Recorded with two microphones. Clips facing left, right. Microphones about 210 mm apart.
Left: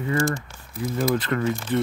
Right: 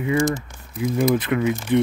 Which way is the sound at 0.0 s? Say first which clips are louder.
Right 3 dB; 10° right (ahead or behind).